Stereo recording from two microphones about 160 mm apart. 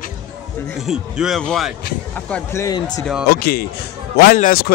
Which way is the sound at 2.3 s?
15° left (ahead or behind).